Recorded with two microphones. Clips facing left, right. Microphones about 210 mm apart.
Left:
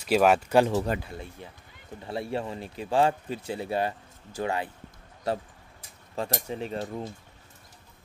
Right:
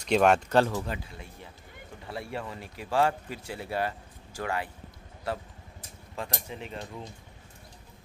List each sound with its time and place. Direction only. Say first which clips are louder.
0.0 s speech: left 1 dB; 5° left (ahead or behind)
0.8 s speech: left 6 dB; 55° left (ahead or behind)
2.0 s speech: left 5 dB; 25° left (ahead or behind)
6.1 s speech: left 6 dB; 35° left (ahead or behind)